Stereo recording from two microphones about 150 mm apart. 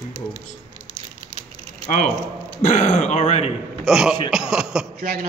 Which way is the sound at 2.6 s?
50° left (ahead or behind).